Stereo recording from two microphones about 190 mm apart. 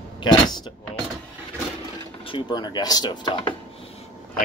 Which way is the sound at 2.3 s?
20° left (ahead or behind).